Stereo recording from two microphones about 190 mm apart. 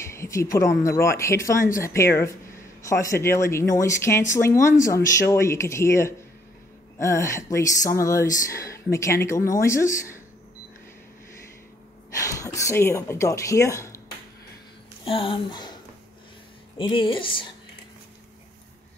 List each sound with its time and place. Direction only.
0.0 s a woman's voice: 15° left (ahead or behind)
12.1 s speech: 15° left (ahead or behind)
15.0 s speech: 25° left (ahead or behind)
16.7 s speech: 25° left (ahead or behind)